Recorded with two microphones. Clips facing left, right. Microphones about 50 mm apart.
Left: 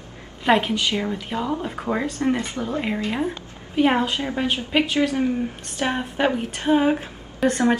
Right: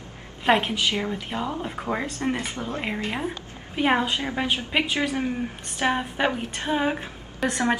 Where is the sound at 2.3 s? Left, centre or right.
Left.